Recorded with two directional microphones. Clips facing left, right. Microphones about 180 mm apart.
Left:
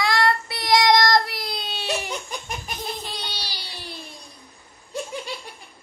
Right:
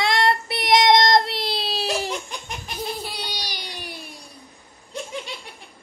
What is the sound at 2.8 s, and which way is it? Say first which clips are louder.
Baby cry: right 2 dB; 10° right (ahead or behind).